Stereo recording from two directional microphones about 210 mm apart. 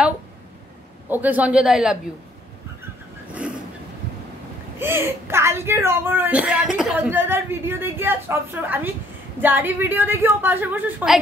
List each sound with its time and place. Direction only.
1.0 s a man's voice: 10° right (ahead or behind)
4.7 s a woman's voice: 10° right (ahead or behind)